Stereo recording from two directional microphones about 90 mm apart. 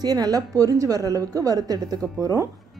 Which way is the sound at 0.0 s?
45° right (ahead or behind).